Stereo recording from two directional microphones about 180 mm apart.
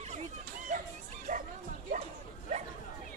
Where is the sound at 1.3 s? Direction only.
45° right (ahead or behind).